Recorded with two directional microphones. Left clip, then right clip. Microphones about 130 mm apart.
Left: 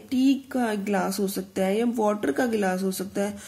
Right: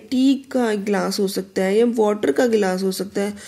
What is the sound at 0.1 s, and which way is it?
Speech, 20° right (ahead or behind).